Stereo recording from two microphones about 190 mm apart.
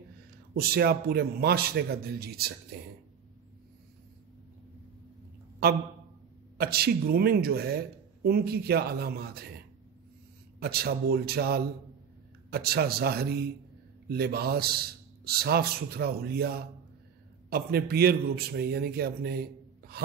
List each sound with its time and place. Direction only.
0.6 s speech: 55° right (ahead or behind)
5.6 s a man's voice: 55° right (ahead or behind)
10.6 s speech: 55° right (ahead or behind)